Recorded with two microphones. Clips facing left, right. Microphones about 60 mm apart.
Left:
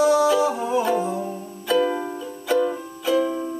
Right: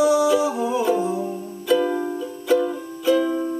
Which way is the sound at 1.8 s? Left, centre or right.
Left.